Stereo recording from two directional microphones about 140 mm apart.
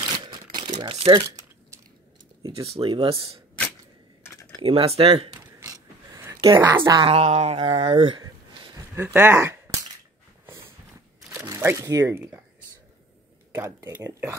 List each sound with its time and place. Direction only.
0.1 s crumpling: 30° right (ahead or behind)
2.6 s speech: 40° right (ahead or behind)
4.6 s speech: 40° right (ahead or behind)
5.6 s mechanisms: 20° right (ahead or behind)
6.4 s speech: 30° right (ahead or behind)
7.1 s speech: 50° right (ahead or behind)
7.6 s speech: 40° right (ahead or behind)
8.9 s speech: 15° right (ahead or behind)
11.2 s speech: 20° right (ahead or behind)
13.6 s speech: 20° right (ahead or behind)